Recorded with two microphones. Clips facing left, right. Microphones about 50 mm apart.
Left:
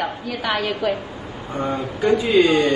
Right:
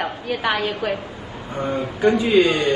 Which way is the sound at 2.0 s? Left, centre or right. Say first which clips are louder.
Even; right.